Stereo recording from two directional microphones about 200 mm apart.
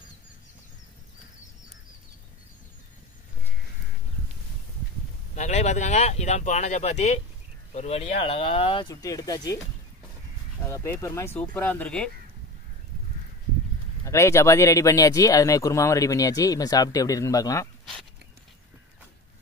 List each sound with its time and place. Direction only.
5.3 s speech: 35° left (ahead or behind); by 9.6 s 20° left (ahead or behind)
10.7 s speech: 15° left (ahead or behind)
14.0 s speech: 15° left (ahead or behind)